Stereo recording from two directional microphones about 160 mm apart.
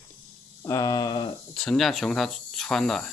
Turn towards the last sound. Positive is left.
turn(degrees=5)  # may be behind; listen again after turning